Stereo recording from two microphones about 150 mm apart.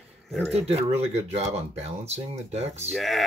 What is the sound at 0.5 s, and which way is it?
Speech, 45° right (ahead or behind).